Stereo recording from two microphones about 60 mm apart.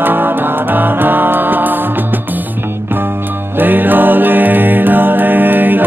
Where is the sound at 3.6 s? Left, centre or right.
Right.